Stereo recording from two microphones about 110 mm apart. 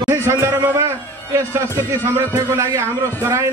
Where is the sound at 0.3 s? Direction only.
20° right (ahead or behind).